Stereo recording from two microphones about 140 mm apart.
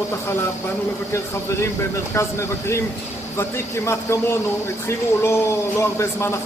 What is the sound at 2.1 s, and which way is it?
Speech, 20° left (ahead or behind).